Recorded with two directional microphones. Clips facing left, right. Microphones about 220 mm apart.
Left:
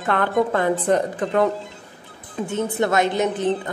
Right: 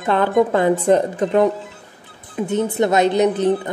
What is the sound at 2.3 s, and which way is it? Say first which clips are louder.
A woman's voice: right 4 dB; 20° right (ahead or behind).